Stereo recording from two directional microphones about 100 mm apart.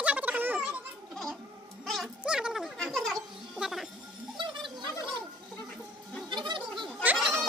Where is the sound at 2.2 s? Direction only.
5° right (ahead or behind).